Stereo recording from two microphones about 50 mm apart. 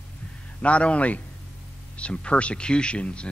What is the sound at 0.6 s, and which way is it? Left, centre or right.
A man's voice, left.